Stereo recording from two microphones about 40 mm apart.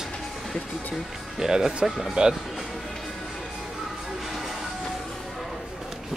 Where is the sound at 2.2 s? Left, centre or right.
Right.